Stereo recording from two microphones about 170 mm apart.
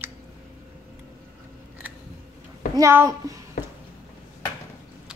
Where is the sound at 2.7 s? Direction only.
15° right (ahead or behind).